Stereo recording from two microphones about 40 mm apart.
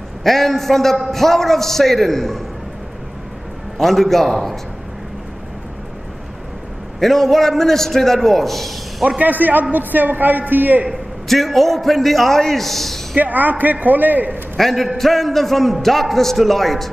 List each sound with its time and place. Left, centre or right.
0.2 s a man's voice: centre
3.7 s a man's voice: centre
7.0 s a man's voice: centre
9.2 s a man's voice: right
11.2 s a man's voice: centre
13.2 s a man's voice: right
14.6 s a man's voice: centre